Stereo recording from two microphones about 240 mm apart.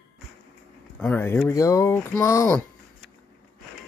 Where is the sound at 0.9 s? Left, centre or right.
Centre.